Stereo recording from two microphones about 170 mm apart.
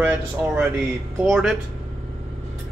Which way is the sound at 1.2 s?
Centre (ahead or behind).